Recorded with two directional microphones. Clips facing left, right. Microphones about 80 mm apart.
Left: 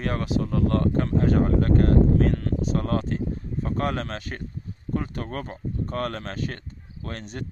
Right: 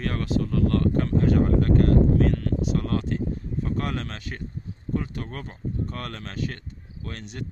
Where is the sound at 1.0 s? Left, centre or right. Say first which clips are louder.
Even; left.